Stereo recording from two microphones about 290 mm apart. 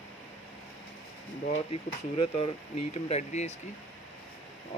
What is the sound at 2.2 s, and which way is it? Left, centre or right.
Speech, left.